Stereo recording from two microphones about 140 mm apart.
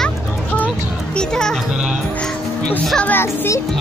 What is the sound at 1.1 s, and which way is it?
Music, 5° left (ahead or behind).